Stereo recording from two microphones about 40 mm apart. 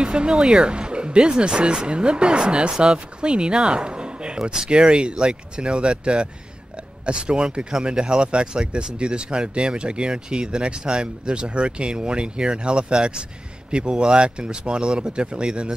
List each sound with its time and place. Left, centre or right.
0.0 s speech: right